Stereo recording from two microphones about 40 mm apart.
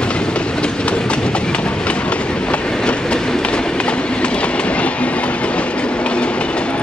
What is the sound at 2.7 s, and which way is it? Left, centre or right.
Train, centre.